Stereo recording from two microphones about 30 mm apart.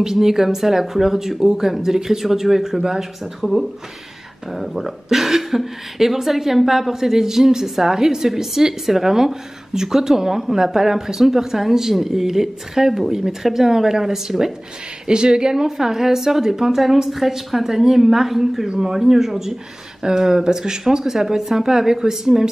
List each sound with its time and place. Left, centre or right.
0.0 s speech: centre
3.3 s speech: centre
15.0 s speech: right; by 19.5 s centre
20.0 s speech: right